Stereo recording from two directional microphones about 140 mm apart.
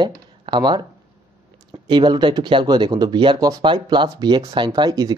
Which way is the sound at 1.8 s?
30° right (ahead or behind).